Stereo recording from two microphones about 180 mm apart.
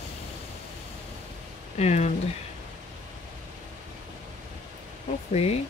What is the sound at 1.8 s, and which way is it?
Speech, 40° left (ahead or behind).